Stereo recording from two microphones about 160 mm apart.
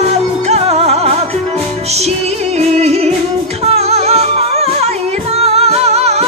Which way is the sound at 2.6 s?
40° right (ahead or behind).